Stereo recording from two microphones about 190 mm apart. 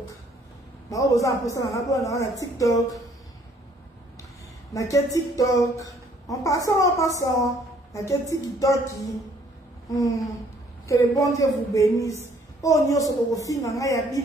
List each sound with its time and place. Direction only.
0.8 s speech: 15° left (ahead or behind)
4.7 s speech: 15° left (ahead or behind)
9.8 s a sound: 20° left (ahead or behind)
10.9 s speech: 15° left (ahead or behind)